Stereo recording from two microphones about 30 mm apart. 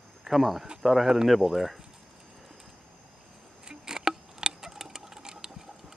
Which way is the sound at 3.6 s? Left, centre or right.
Right.